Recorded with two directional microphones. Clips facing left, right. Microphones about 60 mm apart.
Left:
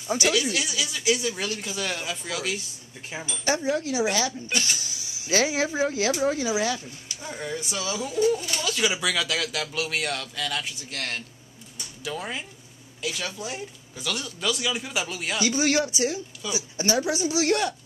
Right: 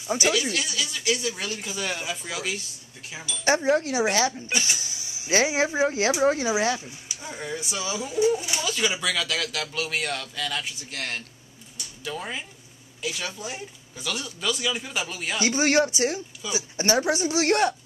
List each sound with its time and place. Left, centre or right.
0.0 s speech: centre
3.4 s a man's voice: right
4.5 s a man's voice: centre; by 6.5 s right
7.2 s speech: centre
15.4 s a man's voice: right